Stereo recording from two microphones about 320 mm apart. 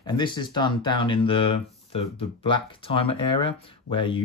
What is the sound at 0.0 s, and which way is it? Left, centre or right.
Speech, centre.